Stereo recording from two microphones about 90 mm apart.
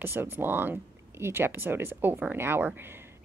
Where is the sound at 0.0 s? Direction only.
25° right (ahead or behind).